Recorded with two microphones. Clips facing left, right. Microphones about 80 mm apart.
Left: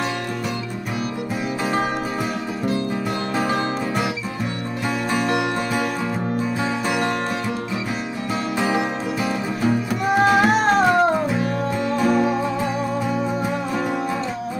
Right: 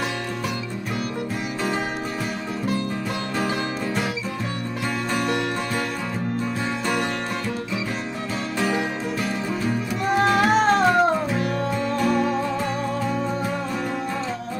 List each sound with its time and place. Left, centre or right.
5.1 s music: centre
9.2 s music: centre